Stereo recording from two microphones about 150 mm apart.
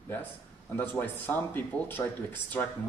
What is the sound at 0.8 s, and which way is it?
Speech, 10° left (ahead or behind).